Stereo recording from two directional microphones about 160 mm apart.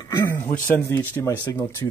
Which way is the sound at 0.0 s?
15° left (ahead or behind).